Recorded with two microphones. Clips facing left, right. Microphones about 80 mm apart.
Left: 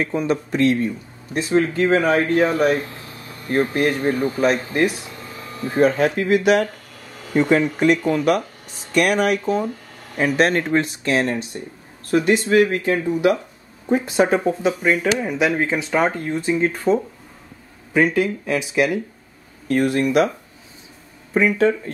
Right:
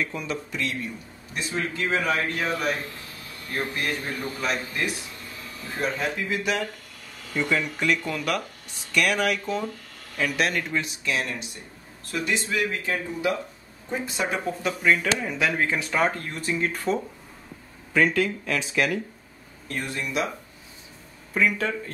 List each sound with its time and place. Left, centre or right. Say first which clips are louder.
0.0 s a man's voice: left 8 dB; left
0.3 s a man's voice: left 12 dB; left
7.3 s a man's voice: left 9 dB; left
8.9 s a man's voice: left 6 dB; left
12.1 s speech: left 11 dB; left
14.1 s a man's voice: left 11 dB; left
14.8 s speech: left 4 dB; left
19.7 s speech: left 12 dB; left
21.3 s speech: left 7 dB; left